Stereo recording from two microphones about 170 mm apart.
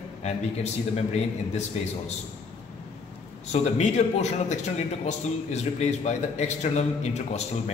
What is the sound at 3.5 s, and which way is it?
A man's voice, 40° left (ahead or behind).